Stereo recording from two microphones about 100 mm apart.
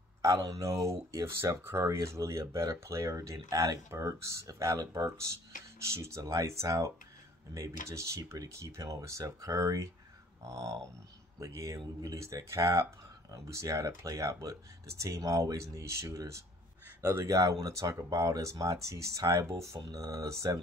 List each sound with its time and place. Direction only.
0.2 s speech: 35° right (ahead or behind)
17.3 s speech: 35° right (ahead or behind)